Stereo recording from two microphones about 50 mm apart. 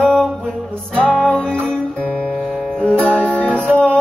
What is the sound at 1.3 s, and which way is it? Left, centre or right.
Music, left.